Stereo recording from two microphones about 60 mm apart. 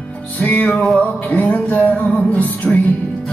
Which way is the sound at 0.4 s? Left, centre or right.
Left.